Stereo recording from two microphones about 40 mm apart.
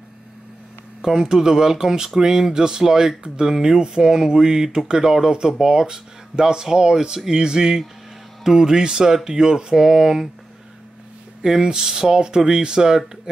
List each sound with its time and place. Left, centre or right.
1.0 s speech: centre
11.4 s speech: centre